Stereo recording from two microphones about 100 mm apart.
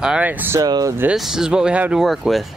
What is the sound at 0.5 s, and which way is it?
Speech, 40° right (ahead or behind).